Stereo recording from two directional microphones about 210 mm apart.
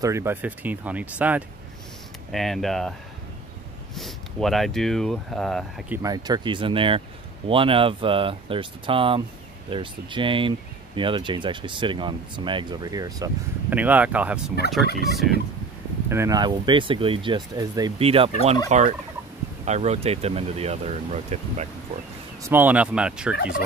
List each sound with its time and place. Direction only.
0.0 s speech: 10° right (ahead or behind)
3.9 s speech: centre (ahead or behind)
6.0 s speech: 20° right (ahead or behind)
16.1 s speech: 15° right (ahead or behind)
18.7 s fowl: 35° right (ahead or behind)
19.6 s speech: 30° right (ahead or behind)
22.5 s speech: 10° right (ahead or behind)